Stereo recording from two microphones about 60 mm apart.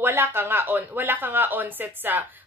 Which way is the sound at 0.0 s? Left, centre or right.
Right.